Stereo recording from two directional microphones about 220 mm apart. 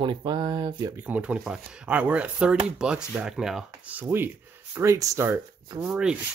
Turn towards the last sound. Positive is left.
turn(degrees=-5)  # may be behind; listen again after turning